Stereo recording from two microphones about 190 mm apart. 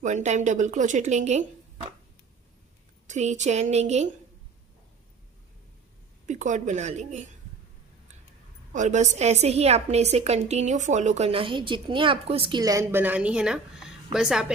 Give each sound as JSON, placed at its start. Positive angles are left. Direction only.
{"t": 0.0, "sound": "a woman's voice", "side_deg": -40}
{"t": 3.1, "sound": "a woman's voice", "side_deg": -40}
{"t": 6.2, "sound": "a woman's voice", "side_deg": -40}
{"t": 8.7, "sound": "a woman's voice", "side_deg": -40}